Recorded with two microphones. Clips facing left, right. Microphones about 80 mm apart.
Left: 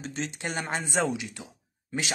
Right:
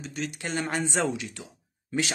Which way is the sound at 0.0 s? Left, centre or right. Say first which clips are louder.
Even; left.